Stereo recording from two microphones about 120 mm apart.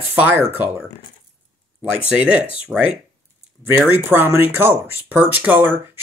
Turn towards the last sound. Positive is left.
turn(degrees=-15)  # may be behind; listen again after turning